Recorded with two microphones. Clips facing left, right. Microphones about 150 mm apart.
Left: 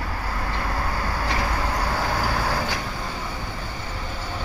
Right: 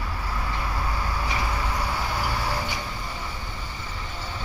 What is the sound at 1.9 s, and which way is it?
Vehicle, 85° left.